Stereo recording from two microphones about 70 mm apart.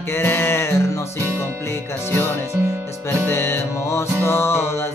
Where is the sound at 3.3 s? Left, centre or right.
Left.